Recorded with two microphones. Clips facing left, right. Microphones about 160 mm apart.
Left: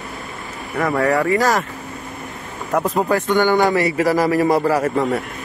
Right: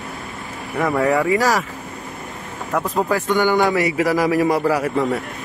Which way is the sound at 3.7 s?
15° right (ahead or behind).